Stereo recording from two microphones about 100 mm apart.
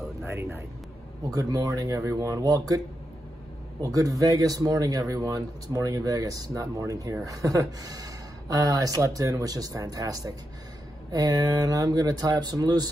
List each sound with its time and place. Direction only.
0.2 s speech: 25° right (ahead or behind)
3.8 s speech: 35° right (ahead or behind)
8.5 s speech: 35° right (ahead or behind)